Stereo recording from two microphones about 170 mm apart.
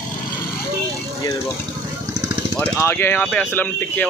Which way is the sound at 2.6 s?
15° left (ahead or behind).